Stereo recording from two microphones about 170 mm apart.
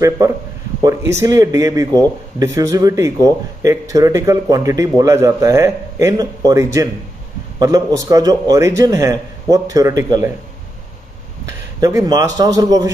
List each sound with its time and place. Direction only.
0.8 s speech: 15° right (ahead or behind)
11.4 s a man's voice: 20° right (ahead or behind)